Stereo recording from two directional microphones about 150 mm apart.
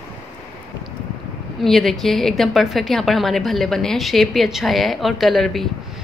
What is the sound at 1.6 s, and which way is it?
A woman's voice, centre (ahead or behind).